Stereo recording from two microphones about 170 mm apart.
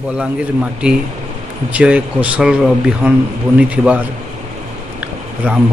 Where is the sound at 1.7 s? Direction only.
10° right (ahead or behind).